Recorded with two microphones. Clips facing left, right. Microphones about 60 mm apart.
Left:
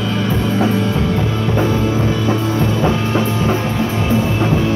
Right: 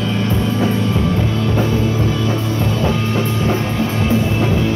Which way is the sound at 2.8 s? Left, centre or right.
Left.